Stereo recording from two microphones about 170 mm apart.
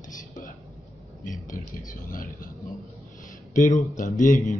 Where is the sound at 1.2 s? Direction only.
50° left (ahead or behind).